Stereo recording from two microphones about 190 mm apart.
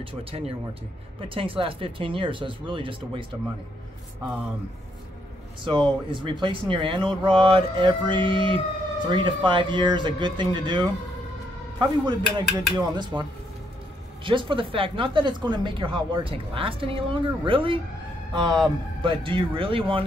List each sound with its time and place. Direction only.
0.0 s speech: 30° right (ahead or behind)
5.6 s speech: 25° right (ahead or behind)
12.1 s speech: 20° right (ahead or behind)